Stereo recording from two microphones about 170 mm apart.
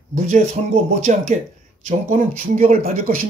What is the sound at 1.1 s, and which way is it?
Speech, 45° right (ahead or behind).